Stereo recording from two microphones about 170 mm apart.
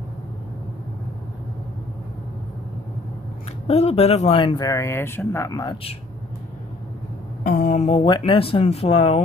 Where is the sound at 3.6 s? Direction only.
40° left (ahead or behind).